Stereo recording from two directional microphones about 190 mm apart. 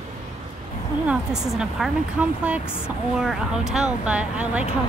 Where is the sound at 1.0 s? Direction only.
5° right (ahead or behind).